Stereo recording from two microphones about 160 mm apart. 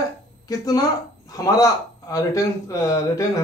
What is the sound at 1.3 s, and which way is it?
Speech, 20° left (ahead or behind).